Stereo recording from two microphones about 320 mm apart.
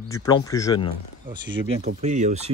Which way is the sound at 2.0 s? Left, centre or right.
Right.